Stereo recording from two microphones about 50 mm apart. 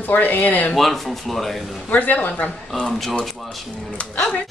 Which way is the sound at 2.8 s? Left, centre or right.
Centre.